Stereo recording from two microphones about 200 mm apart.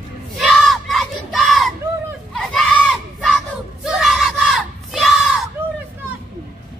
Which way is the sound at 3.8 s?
Centre (ahead or behind).